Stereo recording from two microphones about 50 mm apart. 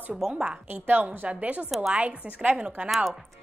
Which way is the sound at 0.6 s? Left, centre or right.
Right.